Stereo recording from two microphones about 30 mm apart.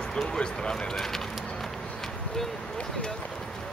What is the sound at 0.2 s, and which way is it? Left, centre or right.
Speech, left.